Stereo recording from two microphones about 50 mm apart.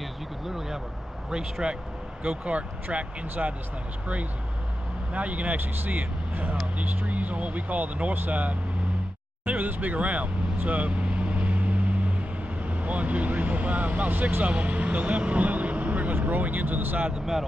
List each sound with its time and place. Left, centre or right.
1.3 s speech: centre
5.1 s speech: right
9.5 s vehicle: right
12.6 s speech: right